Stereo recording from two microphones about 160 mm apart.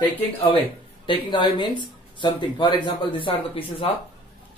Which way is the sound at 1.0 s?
30° left (ahead or behind).